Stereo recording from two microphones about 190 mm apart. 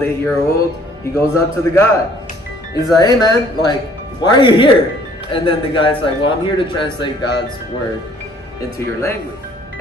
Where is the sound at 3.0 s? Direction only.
20° left (ahead or behind).